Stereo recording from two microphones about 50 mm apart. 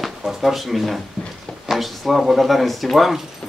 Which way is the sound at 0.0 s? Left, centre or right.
Centre.